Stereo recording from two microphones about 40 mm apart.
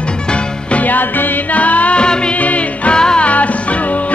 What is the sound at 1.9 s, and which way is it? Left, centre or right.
Music, left.